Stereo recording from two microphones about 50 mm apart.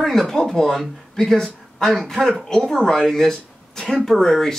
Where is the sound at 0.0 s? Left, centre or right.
Centre.